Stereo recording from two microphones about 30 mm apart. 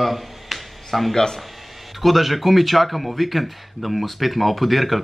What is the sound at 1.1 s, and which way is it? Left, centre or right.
Speech, centre.